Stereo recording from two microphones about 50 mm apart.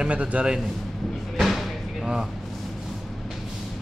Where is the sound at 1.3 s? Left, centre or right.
Centre.